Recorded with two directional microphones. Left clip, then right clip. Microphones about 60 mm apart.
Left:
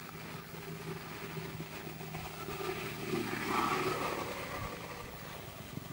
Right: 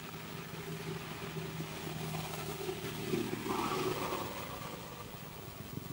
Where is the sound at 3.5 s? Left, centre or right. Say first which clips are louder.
Left 3 dB; left.